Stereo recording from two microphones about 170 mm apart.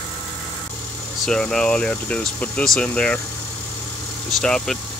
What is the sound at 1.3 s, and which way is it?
Speech, 5° left (ahead or behind).